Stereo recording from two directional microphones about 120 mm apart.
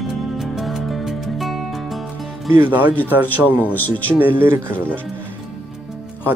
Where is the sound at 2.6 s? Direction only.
15° right (ahead or behind).